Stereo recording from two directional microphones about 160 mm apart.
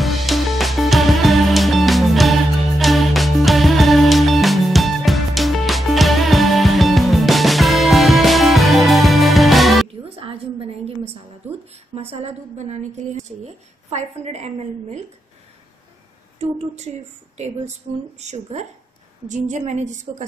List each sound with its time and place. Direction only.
0.0 s music: centre (ahead or behind)
10.0 s a sound: 35° right (ahead or behind)
11.7 s a woman's voice: 40° right (ahead or behind)
16.3 s a woman's voice: 45° right (ahead or behind)
18.2 s a woman's voice: 45° right (ahead or behind)